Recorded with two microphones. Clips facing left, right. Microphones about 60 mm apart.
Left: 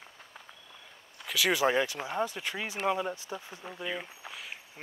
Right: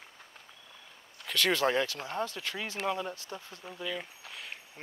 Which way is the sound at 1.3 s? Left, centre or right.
Centre.